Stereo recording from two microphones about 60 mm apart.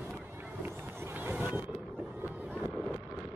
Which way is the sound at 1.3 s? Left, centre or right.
Right.